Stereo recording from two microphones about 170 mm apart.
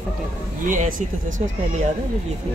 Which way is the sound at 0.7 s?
50° right (ahead or behind).